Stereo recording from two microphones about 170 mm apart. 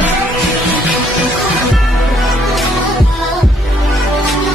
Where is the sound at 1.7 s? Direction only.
Centre (ahead or behind).